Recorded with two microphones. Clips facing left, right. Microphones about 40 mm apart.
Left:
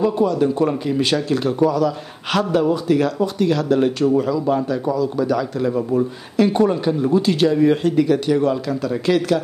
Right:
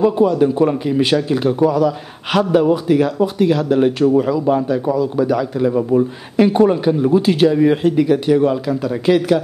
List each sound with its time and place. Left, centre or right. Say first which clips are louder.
0.0 s speech: right 4 dB; centre